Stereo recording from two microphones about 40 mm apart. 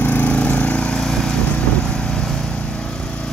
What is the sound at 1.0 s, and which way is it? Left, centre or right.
Lawn mower, centre.